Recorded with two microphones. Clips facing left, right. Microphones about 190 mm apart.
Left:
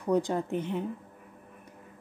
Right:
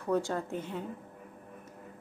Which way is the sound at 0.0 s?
15° left (ahead or behind).